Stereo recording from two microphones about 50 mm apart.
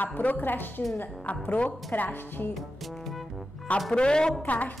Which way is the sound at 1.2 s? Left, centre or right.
Left.